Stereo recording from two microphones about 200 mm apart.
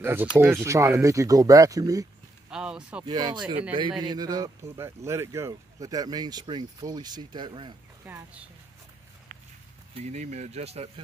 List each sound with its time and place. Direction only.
0.0 s speech: 10° right (ahead or behind)
2.5 s speech: 5° right (ahead or behind)
3.1 s speech: 20° right (ahead or behind)
8.0 s speech: 10° right (ahead or behind)
9.9 s speech: 35° right (ahead or behind)